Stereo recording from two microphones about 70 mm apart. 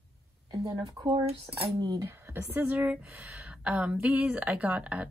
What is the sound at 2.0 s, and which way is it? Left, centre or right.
A woman's voice, right.